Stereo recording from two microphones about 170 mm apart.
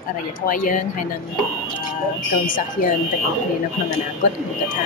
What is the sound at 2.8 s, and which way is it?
Speech, 55° left (ahead or behind).